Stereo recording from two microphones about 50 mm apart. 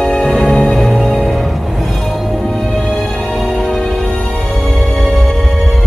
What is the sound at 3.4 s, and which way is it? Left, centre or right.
Music, centre.